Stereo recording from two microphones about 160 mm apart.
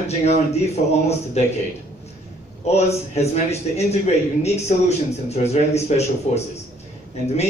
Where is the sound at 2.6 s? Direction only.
40° left (ahead or behind).